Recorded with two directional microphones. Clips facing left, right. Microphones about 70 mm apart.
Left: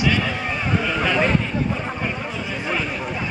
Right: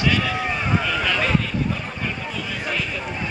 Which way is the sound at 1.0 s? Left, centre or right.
Centre.